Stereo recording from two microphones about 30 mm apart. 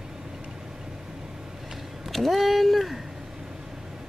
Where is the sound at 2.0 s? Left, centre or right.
Centre.